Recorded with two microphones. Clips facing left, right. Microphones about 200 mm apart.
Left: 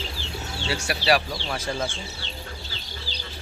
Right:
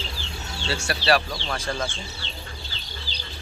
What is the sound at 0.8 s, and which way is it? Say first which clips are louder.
Speech: even; 15° left (ahead or behind).